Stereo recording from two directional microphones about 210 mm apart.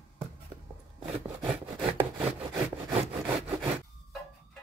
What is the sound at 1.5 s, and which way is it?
Sawing, 30° right (ahead or behind).